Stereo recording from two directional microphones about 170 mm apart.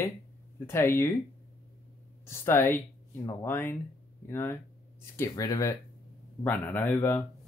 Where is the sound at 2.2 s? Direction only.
15° left (ahead or behind).